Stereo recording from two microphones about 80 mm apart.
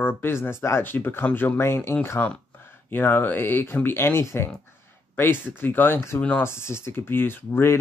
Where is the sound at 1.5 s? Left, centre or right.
Left.